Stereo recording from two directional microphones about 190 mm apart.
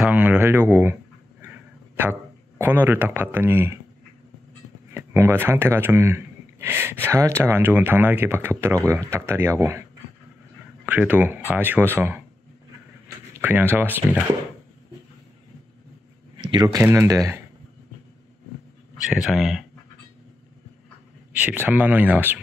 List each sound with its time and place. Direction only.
0.0 s speech: 10° right (ahead or behind)
1.4 s a sound: 10° right (ahead or behind)
2.6 s speech: 10° right (ahead or behind)
4.9 s speech: 15° right (ahead or behind)
10.9 s speech: 10° right (ahead or behind)
13.4 s speech: 10° right (ahead or behind)
16.3 s speech: 25° right (ahead or behind)
18.9 s speech: centre (ahead or behind)
21.3 s speech: 10° right (ahead or behind)